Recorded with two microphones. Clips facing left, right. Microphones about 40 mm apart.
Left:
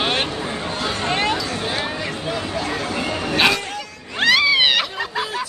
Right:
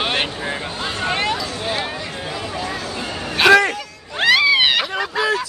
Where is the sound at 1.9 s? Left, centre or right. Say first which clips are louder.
Left 2 dB; left.